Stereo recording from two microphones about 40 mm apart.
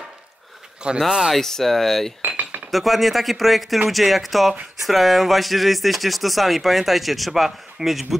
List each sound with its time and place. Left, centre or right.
0.8 s speech: right
1.3 s speech: centre
2.2 s cutlery: right
2.7 s speech: centre